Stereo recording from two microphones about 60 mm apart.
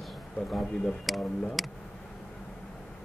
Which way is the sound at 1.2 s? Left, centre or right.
Centre.